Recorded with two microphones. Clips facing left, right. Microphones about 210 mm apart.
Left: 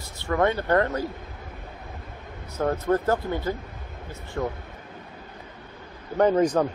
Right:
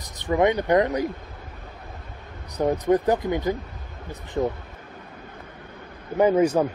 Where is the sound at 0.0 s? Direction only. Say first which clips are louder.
Right 3 dB; 15° right (ahead or behind).